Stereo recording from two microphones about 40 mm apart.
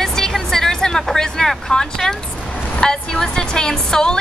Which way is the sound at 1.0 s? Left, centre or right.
Centre.